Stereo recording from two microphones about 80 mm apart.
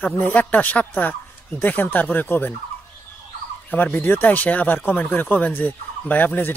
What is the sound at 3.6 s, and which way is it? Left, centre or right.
Speech, left.